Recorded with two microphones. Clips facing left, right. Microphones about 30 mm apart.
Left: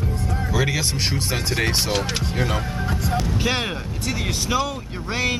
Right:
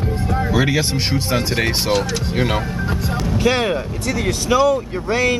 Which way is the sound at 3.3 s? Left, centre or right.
Centre.